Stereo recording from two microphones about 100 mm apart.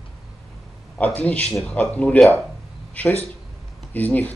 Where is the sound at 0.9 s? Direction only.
15° left (ahead or behind).